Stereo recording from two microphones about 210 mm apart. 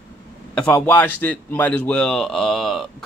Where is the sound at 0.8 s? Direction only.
10° left (ahead or behind).